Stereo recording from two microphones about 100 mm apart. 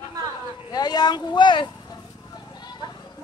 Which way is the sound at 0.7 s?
45° left (ahead or behind).